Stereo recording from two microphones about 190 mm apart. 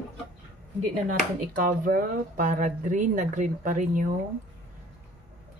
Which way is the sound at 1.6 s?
45° right (ahead or behind).